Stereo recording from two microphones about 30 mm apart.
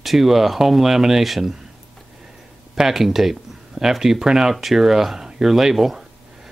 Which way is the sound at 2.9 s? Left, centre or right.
Centre.